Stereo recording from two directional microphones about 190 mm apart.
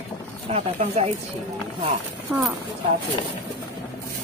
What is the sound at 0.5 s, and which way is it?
Speech, 30° right (ahead or behind).